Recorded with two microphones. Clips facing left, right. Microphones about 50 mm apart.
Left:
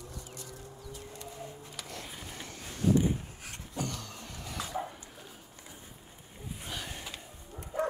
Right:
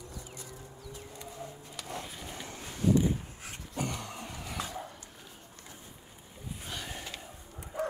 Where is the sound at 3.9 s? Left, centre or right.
Right.